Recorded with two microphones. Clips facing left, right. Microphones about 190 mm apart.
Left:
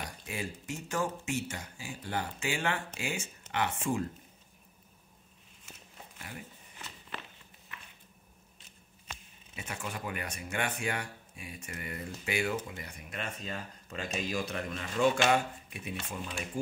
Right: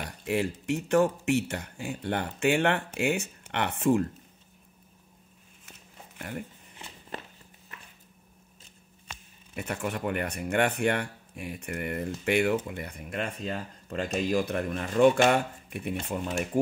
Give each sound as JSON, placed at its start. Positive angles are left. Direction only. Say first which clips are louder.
{"t": 0.3, "sound": "speech", "louder": "right 12 dB", "side_deg": -65}
{"t": 6.1, "sound": "speech", "louder": "right 9 dB", "side_deg": -60}
{"t": 9.6, "sound": "speech", "louder": "right 8 dB", "side_deg": -60}